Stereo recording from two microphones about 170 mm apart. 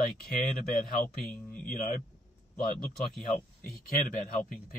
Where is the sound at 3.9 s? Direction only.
55° left (ahead or behind).